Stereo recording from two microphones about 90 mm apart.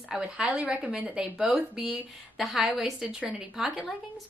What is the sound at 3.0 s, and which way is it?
Speech, 15° right (ahead or behind).